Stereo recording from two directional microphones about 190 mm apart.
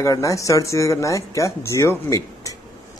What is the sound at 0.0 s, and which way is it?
Speech, 15° left (ahead or behind).